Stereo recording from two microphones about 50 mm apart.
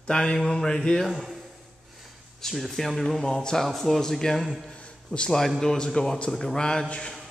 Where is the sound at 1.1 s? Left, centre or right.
Centre.